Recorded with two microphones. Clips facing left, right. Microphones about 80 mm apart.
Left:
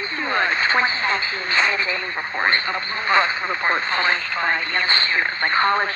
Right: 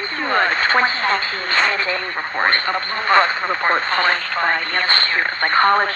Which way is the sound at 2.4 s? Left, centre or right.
Right.